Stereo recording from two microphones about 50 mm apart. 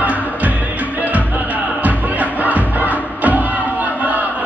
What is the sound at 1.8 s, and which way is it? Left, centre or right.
Music, right.